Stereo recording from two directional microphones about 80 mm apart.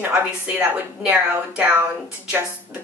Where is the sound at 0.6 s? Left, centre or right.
Centre.